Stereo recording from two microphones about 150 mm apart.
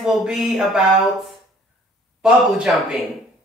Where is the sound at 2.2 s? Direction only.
5° right (ahead or behind).